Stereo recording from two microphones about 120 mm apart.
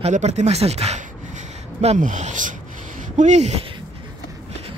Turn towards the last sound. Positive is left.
turn(degrees=-65)  # may be behind; listen again after turning